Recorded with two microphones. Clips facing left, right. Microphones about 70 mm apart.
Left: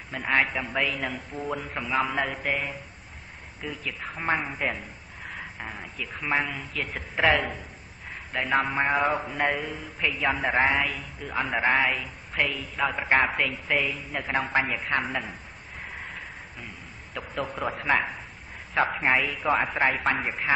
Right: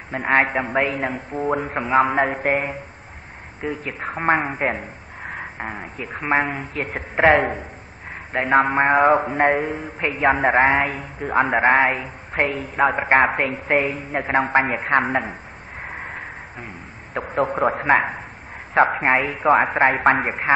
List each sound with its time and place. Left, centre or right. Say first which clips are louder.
0.1 s a man's voice: right 7 dB; right
15.8 s a sound: right 6 dB; right
18.7 s a man's voice: right 7 dB; right